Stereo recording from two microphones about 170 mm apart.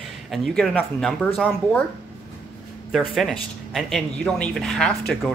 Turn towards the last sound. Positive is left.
turn(degrees=5)  # may be behind; listen again after turning